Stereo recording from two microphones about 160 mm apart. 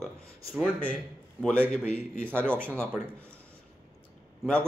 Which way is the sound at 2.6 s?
15° right (ahead or behind).